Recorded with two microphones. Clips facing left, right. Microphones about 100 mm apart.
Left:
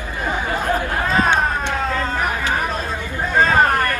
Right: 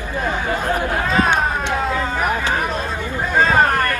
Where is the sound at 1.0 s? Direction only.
Centre (ahead or behind).